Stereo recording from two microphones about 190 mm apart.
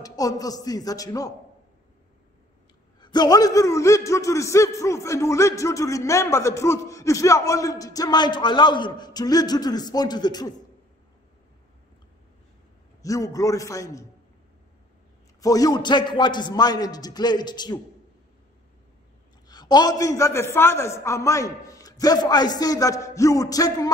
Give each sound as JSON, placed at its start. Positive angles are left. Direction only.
{"t": 0.0, "sound": "a man's voice", "side_deg": 20}
{"t": 3.0, "sound": "a man's voice", "side_deg": 20}
{"t": 13.0, "sound": "a man's voice", "side_deg": 20}
{"t": 15.4, "sound": "a man's voice", "side_deg": 20}
{"t": 19.4, "sound": "a man's voice", "side_deg": 20}